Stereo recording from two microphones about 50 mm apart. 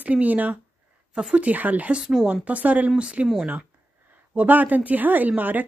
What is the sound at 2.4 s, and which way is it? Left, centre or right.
Speech, right.